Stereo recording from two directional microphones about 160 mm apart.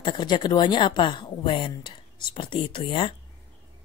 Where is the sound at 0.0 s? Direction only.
30° left (ahead or behind).